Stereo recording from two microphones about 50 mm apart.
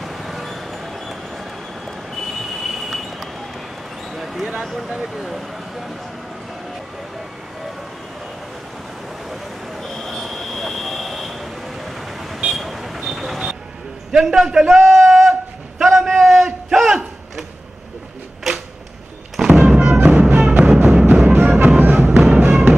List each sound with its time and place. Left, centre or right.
0.0 s music: centre
2.7 s train: centre
4.1 s a sound: centre
4.6 s speech: centre
9.3 s a sound: centre
12.4 s vehicle: centre
14.1 s a man's voice: centre
15.8 s a sound: centre
19.3 s music: centre
21.3 s music: right
22.1 s music: centre
22.4 s music: right